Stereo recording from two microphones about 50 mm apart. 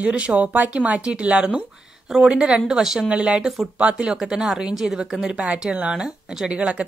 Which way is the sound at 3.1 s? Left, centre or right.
Right.